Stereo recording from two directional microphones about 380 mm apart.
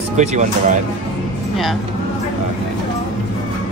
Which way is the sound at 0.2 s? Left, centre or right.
Centre.